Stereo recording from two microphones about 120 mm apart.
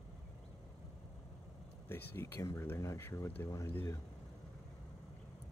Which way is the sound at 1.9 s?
20° left (ahead or behind).